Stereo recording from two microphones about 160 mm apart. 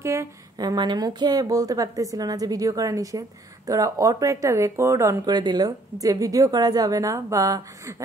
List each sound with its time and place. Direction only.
0.0 s speech: 20° right (ahead or behind)